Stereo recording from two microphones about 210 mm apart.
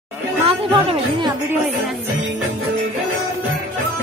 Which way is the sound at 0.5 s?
25° right (ahead or behind).